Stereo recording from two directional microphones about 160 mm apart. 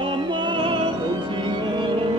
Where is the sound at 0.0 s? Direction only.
30° right (ahead or behind).